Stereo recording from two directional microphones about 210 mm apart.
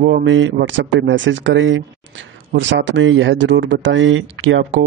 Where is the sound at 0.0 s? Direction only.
55° right (ahead or behind).